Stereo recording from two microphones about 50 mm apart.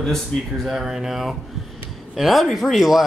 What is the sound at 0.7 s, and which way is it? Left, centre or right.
Speech, centre.